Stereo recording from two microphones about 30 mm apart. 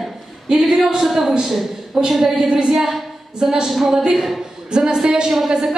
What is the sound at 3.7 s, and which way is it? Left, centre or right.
Speech, centre.